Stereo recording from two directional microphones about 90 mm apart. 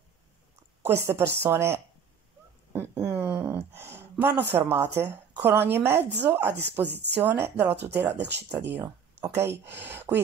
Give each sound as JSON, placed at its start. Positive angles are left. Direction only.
{"t": 0.8, "sound": "speech", "side_deg": -25}
{"t": 3.1, "sound": "a sound", "side_deg": -15}
{"t": 3.4, "sound": "speech", "side_deg": -25}